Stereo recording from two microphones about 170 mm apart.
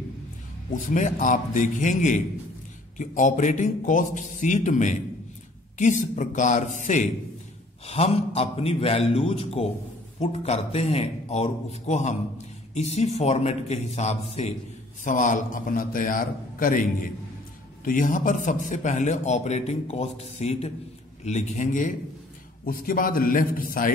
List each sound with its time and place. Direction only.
0.7 s a man's voice: 50° left (ahead or behind)